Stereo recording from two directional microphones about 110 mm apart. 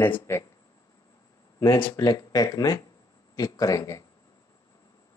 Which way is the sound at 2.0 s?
35° left (ahead or behind).